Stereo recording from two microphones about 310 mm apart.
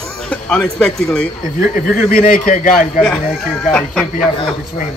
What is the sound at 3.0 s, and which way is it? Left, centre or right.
Speech, centre.